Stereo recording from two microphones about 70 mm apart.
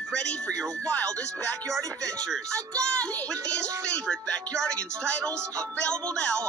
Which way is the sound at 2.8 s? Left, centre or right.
Centre.